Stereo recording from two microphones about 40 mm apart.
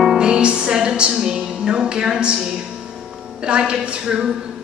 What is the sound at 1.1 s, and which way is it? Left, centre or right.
Music, centre.